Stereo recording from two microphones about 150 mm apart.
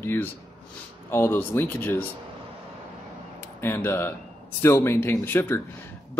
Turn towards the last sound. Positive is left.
turn(degrees=15)  # may be behind; listen again after turning